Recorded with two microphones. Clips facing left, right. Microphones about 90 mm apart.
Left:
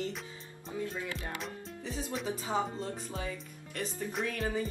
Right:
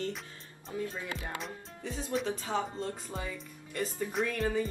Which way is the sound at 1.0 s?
20° right (ahead or behind).